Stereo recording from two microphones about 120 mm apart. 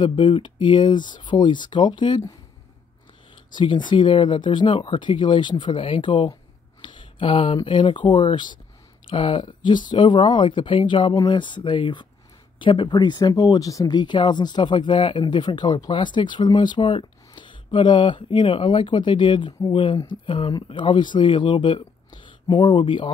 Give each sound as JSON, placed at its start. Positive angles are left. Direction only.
{"t": 0.0, "sound": "speech", "side_deg": 40}
{"t": 3.5, "sound": "speech", "side_deg": 40}